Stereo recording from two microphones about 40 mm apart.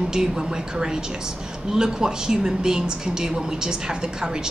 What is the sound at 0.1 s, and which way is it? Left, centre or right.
A woman's voice, centre.